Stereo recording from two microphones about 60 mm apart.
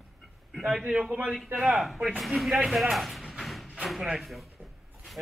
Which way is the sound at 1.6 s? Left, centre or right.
Centre.